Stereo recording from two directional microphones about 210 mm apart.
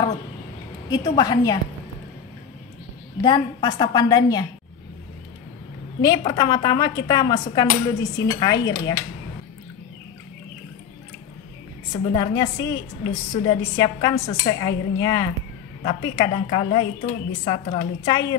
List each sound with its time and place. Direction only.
0.8 s a woman's voice: 20° left (ahead or behind)
3.2 s a woman's voice: 20° left (ahead or behind)
5.9 s a woman's voice: 15° left (ahead or behind)
11.9 s a woman's voice: 20° left (ahead or behind)